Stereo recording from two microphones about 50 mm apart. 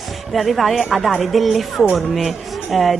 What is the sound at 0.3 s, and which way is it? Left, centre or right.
Speech, centre.